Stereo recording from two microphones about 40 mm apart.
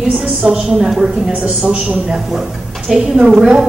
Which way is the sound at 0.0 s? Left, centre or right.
Centre.